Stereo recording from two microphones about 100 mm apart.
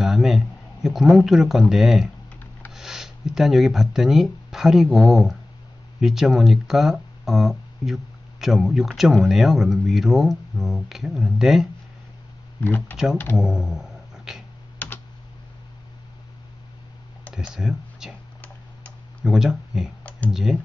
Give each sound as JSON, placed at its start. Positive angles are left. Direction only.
{"t": 0.0, "sound": "a sound", "side_deg": -5}
{"t": 0.8, "sound": "speech", "side_deg": -5}
{"t": 12.5, "sound": "speech", "side_deg": 20}
{"t": 12.9, "sound": "speech", "side_deg": -5}
{"t": 13.4, "sound": "a sound", "side_deg": -5}
{"t": 14.8, "sound": "computer keyboard", "side_deg": 20}
{"t": 17.6, "sound": "speech", "side_deg": -5}
{"t": 19.2, "sound": "speech", "side_deg": -5}
{"t": 20.0, "sound": "computer keyboard", "side_deg": 15}
{"t": 20.2, "sound": "speech", "side_deg": -5}